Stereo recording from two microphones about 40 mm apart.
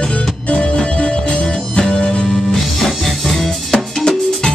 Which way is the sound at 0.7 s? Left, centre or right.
Left.